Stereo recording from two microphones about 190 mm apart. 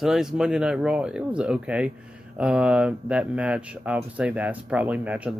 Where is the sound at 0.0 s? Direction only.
Centre (ahead or behind).